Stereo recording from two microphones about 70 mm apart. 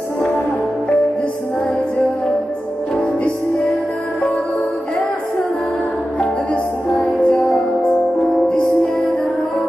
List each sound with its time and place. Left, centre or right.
6.1 s music: centre